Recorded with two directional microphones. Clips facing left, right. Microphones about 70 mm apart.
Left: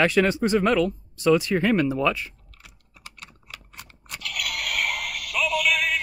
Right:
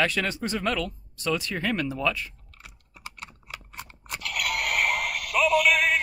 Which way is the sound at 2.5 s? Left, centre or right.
Right.